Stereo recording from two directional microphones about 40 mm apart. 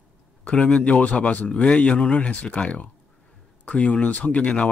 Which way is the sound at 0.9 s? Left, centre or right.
Left.